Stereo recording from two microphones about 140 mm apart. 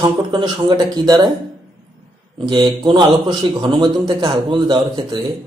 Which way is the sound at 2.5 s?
30° right (ahead or behind).